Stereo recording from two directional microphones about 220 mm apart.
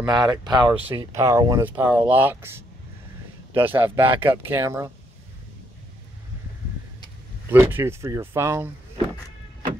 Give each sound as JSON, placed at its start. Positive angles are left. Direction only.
{"t": 0.0, "sound": "speech", "side_deg": -20}
{"t": 7.4, "sound": "speech", "side_deg": -10}